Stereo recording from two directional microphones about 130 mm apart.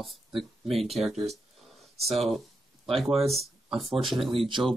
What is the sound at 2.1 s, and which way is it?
Speech, centre (ahead or behind).